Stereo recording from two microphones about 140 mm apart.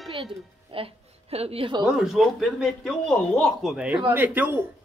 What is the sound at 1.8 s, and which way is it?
A man's voice, centre (ahead or behind).